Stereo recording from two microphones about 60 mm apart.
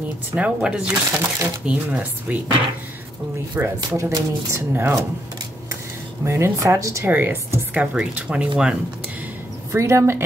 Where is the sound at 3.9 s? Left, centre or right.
Right.